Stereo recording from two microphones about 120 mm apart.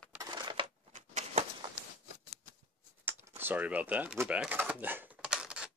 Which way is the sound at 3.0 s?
15° right (ahead or behind).